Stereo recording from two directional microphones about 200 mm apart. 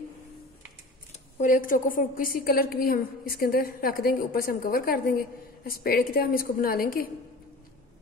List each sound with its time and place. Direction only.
1.4 s a woman's voice: 40° left (ahead or behind)